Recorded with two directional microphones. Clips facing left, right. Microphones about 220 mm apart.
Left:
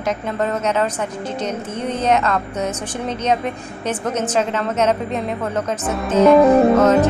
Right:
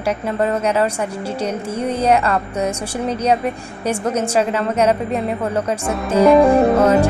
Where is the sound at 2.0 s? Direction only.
10° right (ahead or behind).